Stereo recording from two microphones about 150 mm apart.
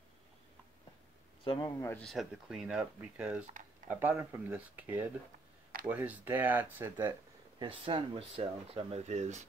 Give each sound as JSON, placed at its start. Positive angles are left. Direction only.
{"t": 1.4, "sound": "speech", "side_deg": 35}
{"t": 1.8, "sound": "speech", "side_deg": 15}
{"t": 2.0, "sound": "speech", "side_deg": 0}
{"t": 7.5, "sound": "speech", "side_deg": -35}